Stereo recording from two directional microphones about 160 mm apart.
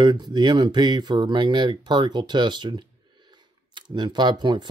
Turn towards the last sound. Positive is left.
turn(degrees=-30)  # may be behind; listen again after turning